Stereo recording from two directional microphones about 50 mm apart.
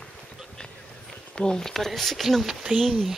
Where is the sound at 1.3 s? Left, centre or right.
Centre.